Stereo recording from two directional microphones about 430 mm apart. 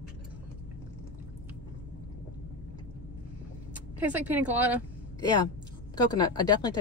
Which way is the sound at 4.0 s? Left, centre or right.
Centre.